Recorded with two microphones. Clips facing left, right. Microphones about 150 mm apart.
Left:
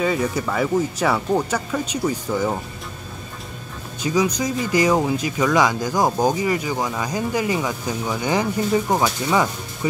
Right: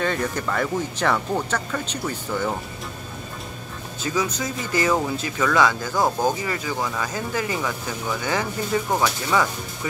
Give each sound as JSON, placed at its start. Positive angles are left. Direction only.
{"t": 0.0, "sound": "speech", "side_deg": 5}
{"t": 4.0, "sound": "speech", "side_deg": 15}